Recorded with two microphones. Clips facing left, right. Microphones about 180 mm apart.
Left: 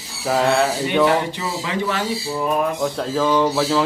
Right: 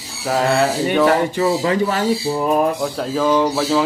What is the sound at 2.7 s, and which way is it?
Speech, 5° right (ahead or behind).